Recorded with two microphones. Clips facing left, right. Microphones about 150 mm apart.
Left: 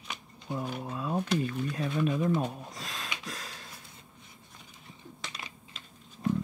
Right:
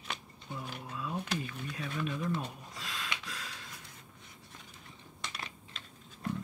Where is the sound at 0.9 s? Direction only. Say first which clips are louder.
Left 5 dB; 40° left (ahead or behind).